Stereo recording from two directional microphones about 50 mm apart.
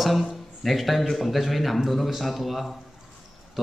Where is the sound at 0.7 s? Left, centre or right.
Centre.